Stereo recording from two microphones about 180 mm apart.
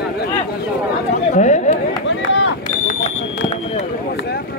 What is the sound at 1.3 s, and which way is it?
Speech, 40° left (ahead or behind).